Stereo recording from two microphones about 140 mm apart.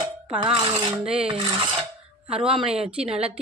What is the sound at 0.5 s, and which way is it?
Speech, 40° right (ahead or behind).